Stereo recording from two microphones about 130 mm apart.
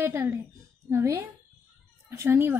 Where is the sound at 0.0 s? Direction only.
20° right (ahead or behind).